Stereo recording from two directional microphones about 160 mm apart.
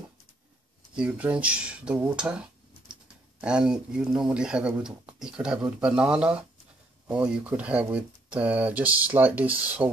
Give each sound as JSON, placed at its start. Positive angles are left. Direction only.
{"t": 0.9, "sound": "speech", "side_deg": -5}